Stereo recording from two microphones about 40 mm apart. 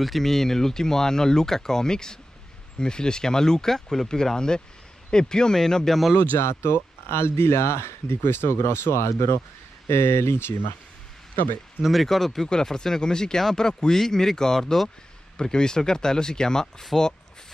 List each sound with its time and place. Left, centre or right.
0.0 s speech: centre
6.3 s speech: left
11.9 s speech: centre
12.3 s speech: centre
16.9 s speech: centre